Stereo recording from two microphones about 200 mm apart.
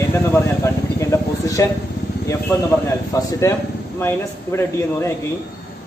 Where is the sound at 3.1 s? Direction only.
15° left (ahead or behind).